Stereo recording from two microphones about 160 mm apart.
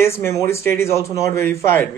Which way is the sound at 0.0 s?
15° left (ahead or behind).